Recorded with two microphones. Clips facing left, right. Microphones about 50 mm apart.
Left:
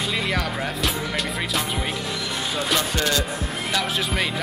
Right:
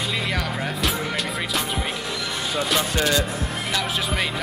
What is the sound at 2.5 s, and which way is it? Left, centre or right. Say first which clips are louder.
Speech: right 1 dB; centre.